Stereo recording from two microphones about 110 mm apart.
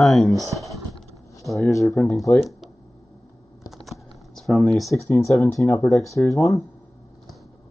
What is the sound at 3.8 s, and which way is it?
Typing, centre (ahead or behind).